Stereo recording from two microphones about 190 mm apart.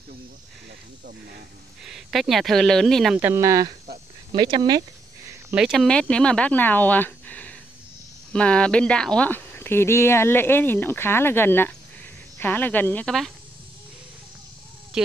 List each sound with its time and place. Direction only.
1.9 s speech: centre (ahead or behind); by 4.8 s 20° right (ahead or behind)
5.5 s speech: centre (ahead or behind)